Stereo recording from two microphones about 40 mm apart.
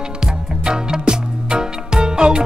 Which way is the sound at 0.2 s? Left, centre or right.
Centre.